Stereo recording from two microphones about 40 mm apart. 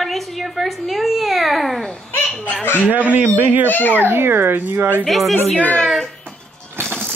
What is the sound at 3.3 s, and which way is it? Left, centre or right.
Speech, right.